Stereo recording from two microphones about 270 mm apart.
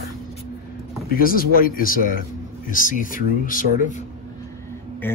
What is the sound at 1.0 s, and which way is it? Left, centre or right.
Speech, left.